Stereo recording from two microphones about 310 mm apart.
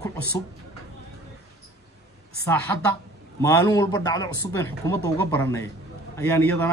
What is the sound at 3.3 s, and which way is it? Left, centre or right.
Speech, centre.